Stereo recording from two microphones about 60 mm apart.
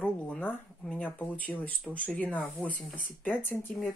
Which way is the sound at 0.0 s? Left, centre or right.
Left.